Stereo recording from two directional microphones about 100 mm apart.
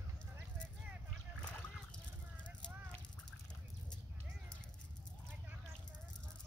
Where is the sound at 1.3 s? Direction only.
10° left (ahead or behind).